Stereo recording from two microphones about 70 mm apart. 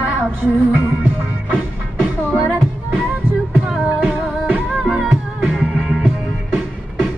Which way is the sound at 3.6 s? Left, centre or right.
Centre.